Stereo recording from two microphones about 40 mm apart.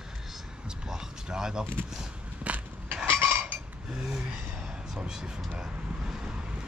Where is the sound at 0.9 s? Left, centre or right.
Centre.